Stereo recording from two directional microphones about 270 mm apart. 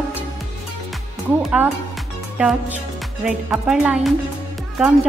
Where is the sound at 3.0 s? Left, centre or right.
Centre.